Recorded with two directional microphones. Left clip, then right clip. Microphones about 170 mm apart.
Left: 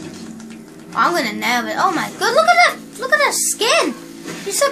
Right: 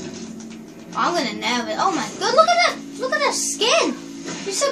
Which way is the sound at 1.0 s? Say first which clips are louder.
Left 4 dB; 55° left (ahead or behind).